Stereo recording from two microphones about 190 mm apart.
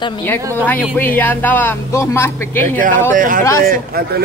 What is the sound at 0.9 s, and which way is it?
Speech, 10° left (ahead or behind).